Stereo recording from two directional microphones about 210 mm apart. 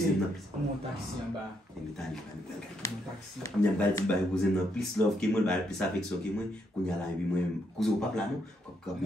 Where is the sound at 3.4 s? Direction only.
10° left (ahead or behind).